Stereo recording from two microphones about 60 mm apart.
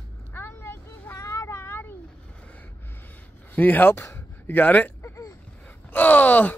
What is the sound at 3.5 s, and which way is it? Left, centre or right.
Speech, left.